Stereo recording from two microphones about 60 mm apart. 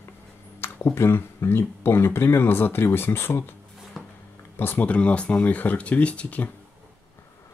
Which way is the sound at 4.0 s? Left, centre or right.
Centre.